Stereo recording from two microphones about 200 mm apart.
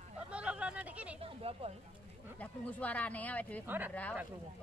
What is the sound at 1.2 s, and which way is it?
Speech, 30° right (ahead or behind).